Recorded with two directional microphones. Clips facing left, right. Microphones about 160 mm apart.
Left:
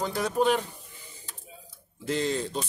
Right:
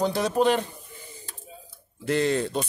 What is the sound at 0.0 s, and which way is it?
Speech, 80° right.